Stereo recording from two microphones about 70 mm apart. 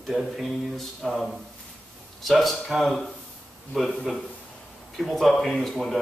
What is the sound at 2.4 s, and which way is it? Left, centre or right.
Speech, centre.